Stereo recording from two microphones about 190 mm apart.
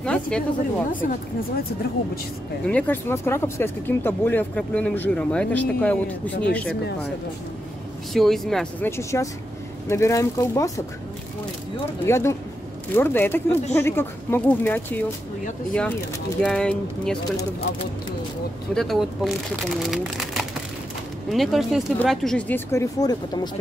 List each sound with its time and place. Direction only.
0.0 s speech: 5° left (ahead or behind)
2.6 s speech: 10° left (ahead or behind)
8.1 s speech: centre (ahead or behind)
8.9 s speech: 15° left (ahead or behind)
12.1 s speech: 15° left (ahead or behind)
18.8 s speech: centre (ahead or behind)
22.7 s speech: 15° left (ahead or behind)